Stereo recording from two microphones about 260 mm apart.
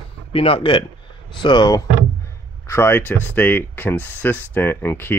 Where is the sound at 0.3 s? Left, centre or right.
Left.